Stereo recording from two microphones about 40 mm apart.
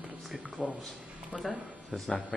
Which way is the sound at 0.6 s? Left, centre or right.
Centre.